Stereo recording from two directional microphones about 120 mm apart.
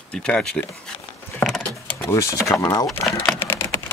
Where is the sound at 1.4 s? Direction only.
5° left (ahead or behind).